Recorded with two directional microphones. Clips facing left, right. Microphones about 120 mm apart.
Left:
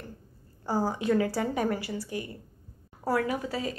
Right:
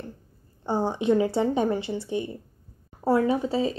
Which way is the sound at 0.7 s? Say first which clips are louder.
Right 4 dB; 25° right (ahead or behind).